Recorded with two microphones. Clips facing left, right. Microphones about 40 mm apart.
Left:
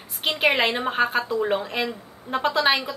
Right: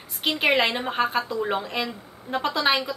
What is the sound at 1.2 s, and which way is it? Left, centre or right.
Speech, left.